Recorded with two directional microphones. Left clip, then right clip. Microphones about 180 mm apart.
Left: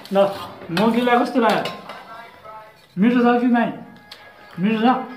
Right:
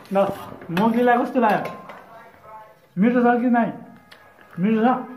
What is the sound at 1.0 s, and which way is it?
Speech, 30° right (ahead or behind).